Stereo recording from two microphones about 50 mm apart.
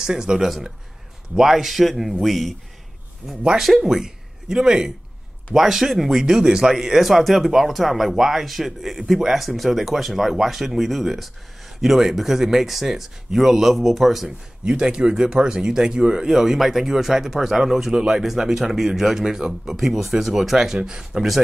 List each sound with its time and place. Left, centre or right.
0.0 s speech: centre
3.2 s a man's voice: right
3.5 s speech: centre
14.6 s speech: centre